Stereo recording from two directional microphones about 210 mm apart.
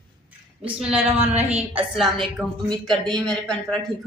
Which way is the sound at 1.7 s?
Centre (ahead or behind).